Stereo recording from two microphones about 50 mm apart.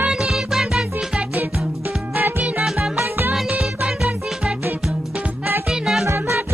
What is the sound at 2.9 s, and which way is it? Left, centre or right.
Music, right.